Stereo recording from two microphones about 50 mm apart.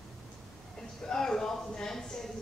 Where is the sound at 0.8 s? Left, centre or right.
Centre.